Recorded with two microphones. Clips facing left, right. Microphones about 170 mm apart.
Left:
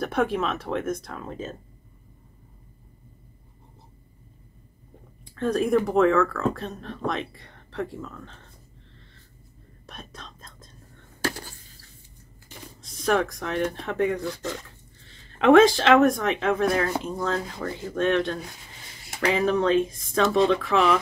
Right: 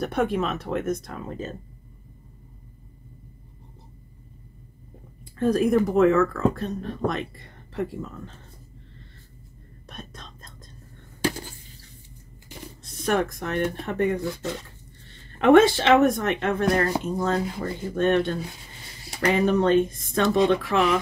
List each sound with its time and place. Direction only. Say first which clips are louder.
0.0 s speech: even; centre (ahead or behind)
5.4 s speech: right 2 dB; centre (ahead or behind)
9.8 s whispering: right 1 dB; centre (ahead or behind)
11.1 s a sound: right 3 dB; 15° right (ahead or behind)
12.8 s speech: left 1 dB; centre (ahead or behind)
15.0 s a sound: even; centre (ahead or behind)
16.0 s speech: even; centre (ahead or behind)